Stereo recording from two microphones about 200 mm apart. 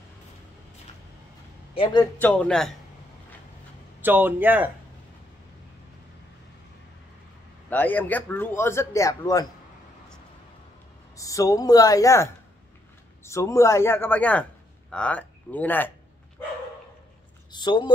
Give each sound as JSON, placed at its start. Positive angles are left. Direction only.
{"t": 1.7, "sound": "a man's voice", "side_deg": 25}
{"t": 2.1, "sound": "speech", "side_deg": 5}
{"t": 4.0, "sound": "speech", "side_deg": -10}
{"t": 7.7, "sound": "speech", "side_deg": 10}
{"t": 11.1, "sound": "speech", "side_deg": 15}
{"t": 17.5, "sound": "speech", "side_deg": 20}